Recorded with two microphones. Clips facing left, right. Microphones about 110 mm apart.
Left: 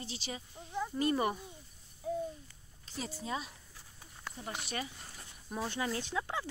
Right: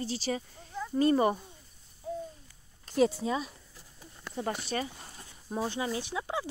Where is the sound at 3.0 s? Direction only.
70° right (ahead or behind).